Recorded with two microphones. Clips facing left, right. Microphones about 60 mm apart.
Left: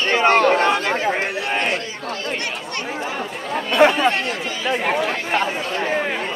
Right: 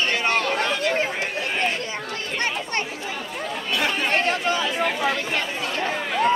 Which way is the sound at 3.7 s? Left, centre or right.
Left.